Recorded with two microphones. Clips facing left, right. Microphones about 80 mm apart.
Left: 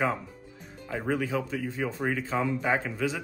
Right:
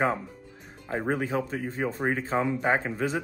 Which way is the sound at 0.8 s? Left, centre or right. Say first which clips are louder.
Right 1 dB; right.